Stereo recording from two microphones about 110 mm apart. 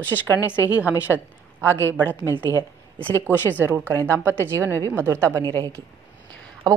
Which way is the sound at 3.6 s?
15° right (ahead or behind).